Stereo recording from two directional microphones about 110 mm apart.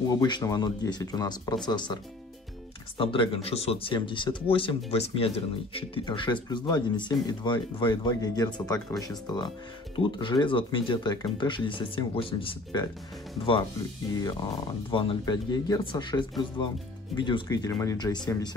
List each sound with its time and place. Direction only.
0.1 s speech: 35° left (ahead or behind)
3.0 s speech: 55° left (ahead or behind)
6.0 s speech: 45° left (ahead or behind)
9.9 s speech: 50° left (ahead or behind)
14.9 s speech: 50° left (ahead or behind)